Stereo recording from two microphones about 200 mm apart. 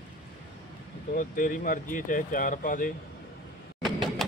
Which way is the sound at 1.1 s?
40° left (ahead or behind).